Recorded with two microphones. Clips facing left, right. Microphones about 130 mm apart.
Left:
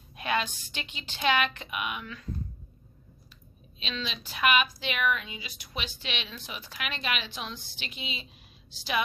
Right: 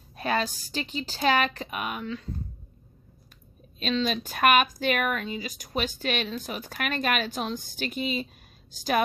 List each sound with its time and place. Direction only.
0.1 s a woman's voice: 40° right (ahead or behind)
3.8 s a woman's voice: 45° right (ahead or behind)